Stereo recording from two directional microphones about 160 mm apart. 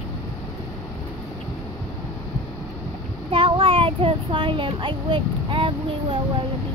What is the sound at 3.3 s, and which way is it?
A child's voice, 35° right (ahead or behind).